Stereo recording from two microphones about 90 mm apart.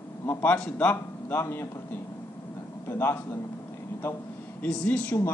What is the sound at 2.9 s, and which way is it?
Speech, 25° left (ahead or behind).